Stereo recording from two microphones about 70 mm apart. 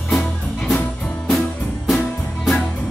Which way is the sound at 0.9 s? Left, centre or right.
Centre.